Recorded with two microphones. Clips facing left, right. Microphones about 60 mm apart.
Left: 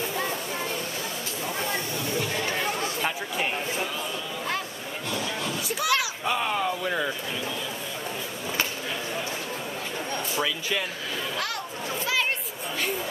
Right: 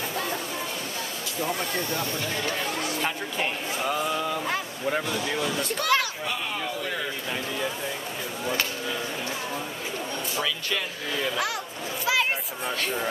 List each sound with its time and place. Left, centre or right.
3.8 s speech: right
5.4 s speech: centre
6.2 s speech: centre
10.3 s speech: centre